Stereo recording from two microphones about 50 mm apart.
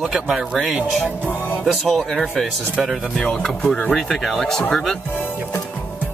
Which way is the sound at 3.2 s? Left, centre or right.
Centre.